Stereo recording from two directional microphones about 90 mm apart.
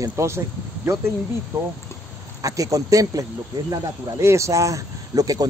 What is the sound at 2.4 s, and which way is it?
Speech, 40° right (ahead or behind).